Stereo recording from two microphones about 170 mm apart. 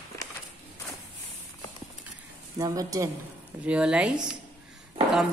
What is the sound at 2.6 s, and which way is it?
Speech, 20° right (ahead or behind).